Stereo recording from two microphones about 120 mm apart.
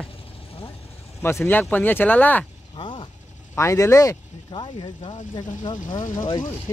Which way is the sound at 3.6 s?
25° left (ahead or behind).